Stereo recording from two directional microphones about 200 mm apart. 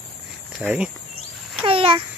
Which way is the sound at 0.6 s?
5° right (ahead or behind).